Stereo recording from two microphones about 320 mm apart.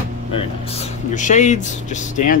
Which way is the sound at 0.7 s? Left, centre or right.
Left.